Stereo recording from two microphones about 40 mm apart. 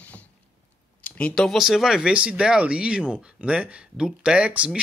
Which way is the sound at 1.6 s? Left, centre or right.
Centre.